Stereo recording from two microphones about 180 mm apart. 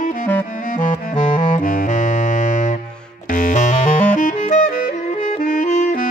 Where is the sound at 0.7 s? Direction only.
45° left (ahead or behind).